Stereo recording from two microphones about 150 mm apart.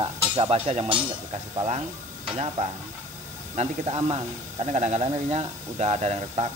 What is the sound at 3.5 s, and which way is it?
Speech, 45° right (ahead or behind).